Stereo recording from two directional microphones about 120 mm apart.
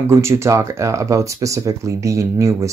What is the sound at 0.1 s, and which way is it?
Speech, 25° right (ahead or behind).